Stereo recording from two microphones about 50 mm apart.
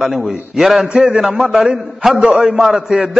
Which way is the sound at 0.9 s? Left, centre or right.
Centre.